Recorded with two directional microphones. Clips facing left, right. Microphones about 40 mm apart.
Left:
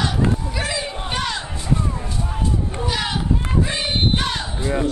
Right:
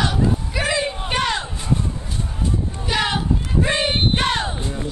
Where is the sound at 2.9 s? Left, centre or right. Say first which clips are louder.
Right 5 dB; centre.